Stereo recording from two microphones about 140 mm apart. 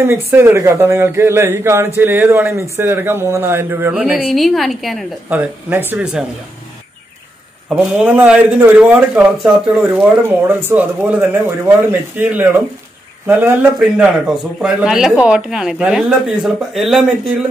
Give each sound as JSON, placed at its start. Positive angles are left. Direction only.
{"t": 0.0, "sound": "a man's voice", "side_deg": -20}
{"t": 5.3, "sound": "speech", "side_deg": -10}
{"t": 7.7, "sound": "speech", "side_deg": -10}